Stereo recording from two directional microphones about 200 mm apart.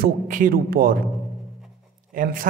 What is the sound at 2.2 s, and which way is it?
Speech, 45° right (ahead or behind).